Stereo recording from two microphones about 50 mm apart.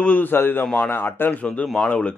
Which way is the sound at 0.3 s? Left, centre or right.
Left.